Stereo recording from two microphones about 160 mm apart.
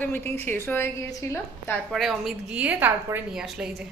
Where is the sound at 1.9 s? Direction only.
Centre (ahead or behind).